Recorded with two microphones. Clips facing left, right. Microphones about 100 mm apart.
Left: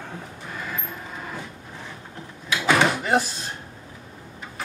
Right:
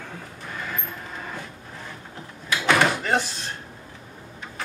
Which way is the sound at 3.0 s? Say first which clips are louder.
Left 2 dB; 10° left (ahead or behind).